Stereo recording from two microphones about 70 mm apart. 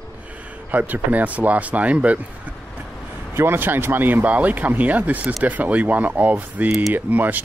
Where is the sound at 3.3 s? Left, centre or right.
Right.